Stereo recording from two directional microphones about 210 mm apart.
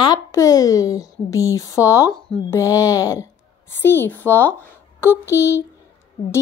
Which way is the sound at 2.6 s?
15° left (ahead or behind).